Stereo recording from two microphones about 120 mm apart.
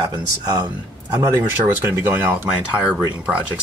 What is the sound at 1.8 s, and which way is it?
Speech, 20° right (ahead or behind).